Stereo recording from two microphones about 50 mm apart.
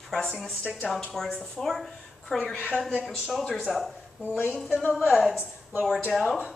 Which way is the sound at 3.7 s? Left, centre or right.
Centre.